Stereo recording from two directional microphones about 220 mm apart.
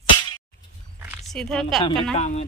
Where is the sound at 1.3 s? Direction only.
Centre (ahead or behind).